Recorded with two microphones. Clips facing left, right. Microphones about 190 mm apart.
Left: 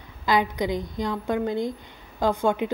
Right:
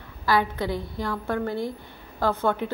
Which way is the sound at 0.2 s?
15° left (ahead or behind).